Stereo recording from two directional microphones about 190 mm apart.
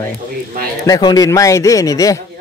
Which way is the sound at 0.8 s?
20° left (ahead or behind).